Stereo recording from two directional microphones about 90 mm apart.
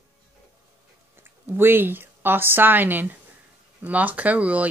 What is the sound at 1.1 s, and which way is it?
A woman's voice, 25° right (ahead or behind).